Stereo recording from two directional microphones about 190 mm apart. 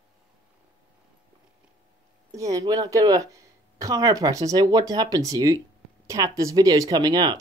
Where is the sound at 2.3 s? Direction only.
15° right (ahead or behind).